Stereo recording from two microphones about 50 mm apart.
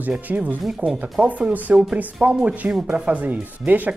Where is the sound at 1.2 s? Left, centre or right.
Right.